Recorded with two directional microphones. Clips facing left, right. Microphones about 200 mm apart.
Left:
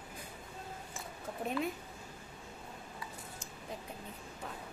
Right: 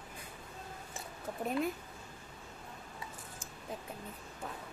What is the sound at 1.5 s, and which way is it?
Speech, centre (ahead or behind).